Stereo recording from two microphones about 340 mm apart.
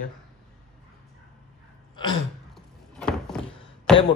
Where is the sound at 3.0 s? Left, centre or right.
Centre.